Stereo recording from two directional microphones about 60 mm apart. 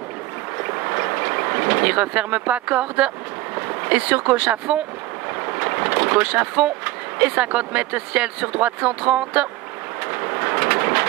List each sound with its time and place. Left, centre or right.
0.7 s vehicle: right
3.5 s speech: right
10.1 s bird: right